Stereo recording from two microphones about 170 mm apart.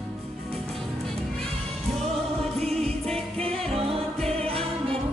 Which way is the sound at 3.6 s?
35° right (ahead or behind).